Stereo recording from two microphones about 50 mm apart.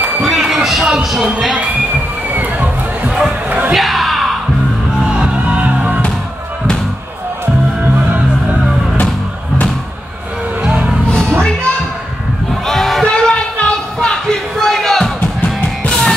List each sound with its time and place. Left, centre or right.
0.0 s a sound: right
0.3 s speech: centre
2.3 s music: right
3.1 s music: centre
3.4 s music: right
3.7 s music: centre
5.0 s music: centre
11.1 s music: centre
12.6 s a sound: centre
13.1 s a sound: centre
15.1 s music: left